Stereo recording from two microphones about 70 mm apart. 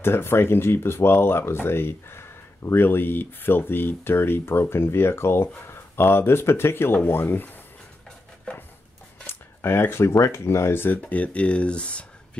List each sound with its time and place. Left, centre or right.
0.0 s speech: left
9.2 s speech: left
11.0 s speech: left